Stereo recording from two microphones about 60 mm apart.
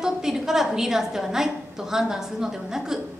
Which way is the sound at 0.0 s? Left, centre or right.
Centre.